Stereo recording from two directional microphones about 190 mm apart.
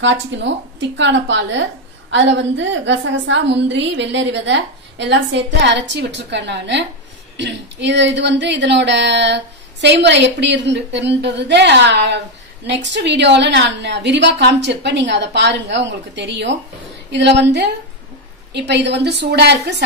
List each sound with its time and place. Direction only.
0.0 s a woman's voice: 70° right (ahead or behind)